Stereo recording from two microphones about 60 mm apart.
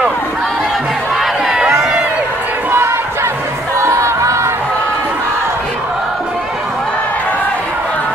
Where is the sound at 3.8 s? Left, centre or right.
Right.